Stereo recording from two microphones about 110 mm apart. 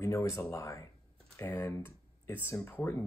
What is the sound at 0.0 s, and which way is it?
Speech, 25° left (ahead or behind).